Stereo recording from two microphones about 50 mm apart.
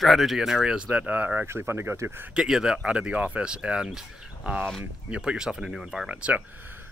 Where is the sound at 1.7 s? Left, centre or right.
Right.